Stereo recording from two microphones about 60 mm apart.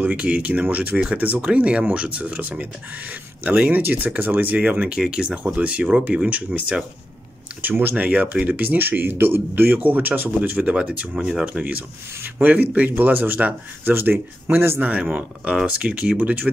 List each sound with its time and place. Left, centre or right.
0.0 s speech: right
11.4 s speech: right
14.8 s speech: right